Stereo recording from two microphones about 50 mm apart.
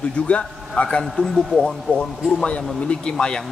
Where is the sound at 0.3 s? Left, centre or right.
Left.